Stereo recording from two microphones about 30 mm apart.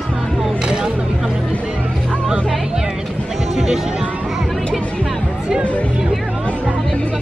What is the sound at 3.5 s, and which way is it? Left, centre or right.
Music, centre.